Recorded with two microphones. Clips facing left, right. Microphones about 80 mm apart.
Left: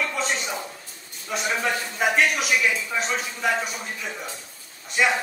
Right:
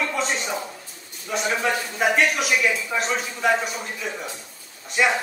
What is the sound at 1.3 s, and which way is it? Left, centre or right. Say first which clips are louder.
A man's voice: right 2 dB; centre.